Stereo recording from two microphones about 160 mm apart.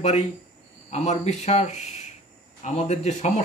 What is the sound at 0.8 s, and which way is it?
Speech, 45° left (ahead or behind).